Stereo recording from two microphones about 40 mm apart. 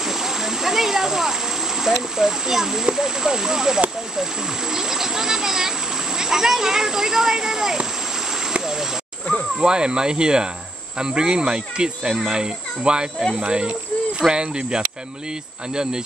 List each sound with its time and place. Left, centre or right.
0.0 s stream: centre
1.8 s a child's voice: centre
9.6 s speech: right